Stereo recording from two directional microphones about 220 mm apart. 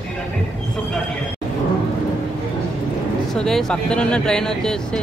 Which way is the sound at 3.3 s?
Centre (ahead or behind).